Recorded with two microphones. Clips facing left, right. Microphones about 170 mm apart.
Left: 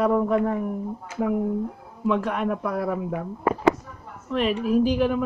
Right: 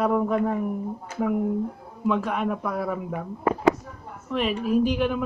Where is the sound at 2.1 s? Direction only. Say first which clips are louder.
Left 1 dB; centre (ahead or behind).